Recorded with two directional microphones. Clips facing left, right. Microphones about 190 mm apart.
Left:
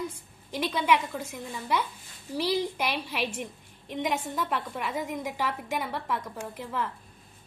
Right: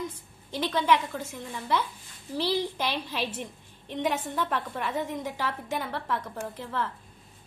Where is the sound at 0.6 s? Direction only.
10° left (ahead or behind).